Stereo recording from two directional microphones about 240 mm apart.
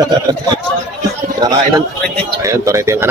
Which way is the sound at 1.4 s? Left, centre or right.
Centre.